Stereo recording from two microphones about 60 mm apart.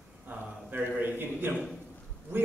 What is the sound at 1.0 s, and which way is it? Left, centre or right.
Speech, right.